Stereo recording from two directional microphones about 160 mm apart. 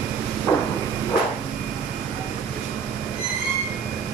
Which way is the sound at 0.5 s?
15° left (ahead or behind).